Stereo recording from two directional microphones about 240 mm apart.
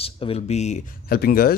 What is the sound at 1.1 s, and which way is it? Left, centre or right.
Speech, left.